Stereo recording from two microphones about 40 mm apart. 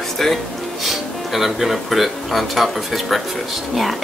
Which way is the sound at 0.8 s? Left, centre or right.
Centre.